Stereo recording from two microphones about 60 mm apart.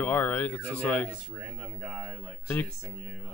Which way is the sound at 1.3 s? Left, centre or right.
Right.